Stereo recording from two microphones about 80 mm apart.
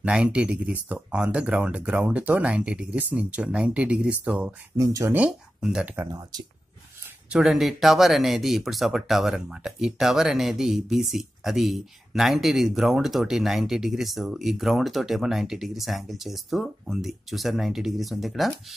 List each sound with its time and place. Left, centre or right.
0.0 s speech: centre
4.7 s speech: right
5.1 s speech: centre
7.2 s speech: centre